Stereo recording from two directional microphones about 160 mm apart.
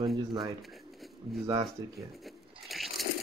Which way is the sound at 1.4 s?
25° right (ahead or behind).